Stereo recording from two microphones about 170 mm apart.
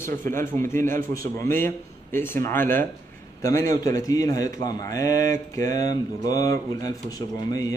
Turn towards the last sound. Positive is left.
turn(degrees=20)  # may be behind; listen again after turning